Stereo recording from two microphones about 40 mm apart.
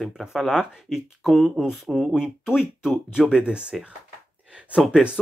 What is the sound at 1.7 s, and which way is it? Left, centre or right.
Speech, centre.